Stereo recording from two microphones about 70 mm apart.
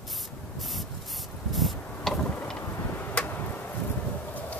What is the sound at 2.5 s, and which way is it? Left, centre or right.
Chop, left.